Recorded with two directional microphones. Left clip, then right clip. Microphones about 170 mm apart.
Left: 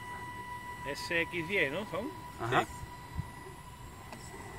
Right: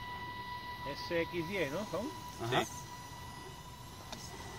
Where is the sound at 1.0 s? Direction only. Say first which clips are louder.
Left 3 dB; 30° left (ahead or behind).